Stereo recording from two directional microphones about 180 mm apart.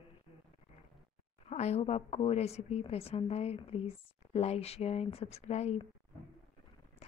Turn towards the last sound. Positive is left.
turn(degrees=35)  # may be behind; listen again after turning